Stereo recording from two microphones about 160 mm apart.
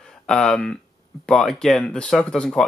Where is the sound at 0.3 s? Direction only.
5° left (ahead or behind).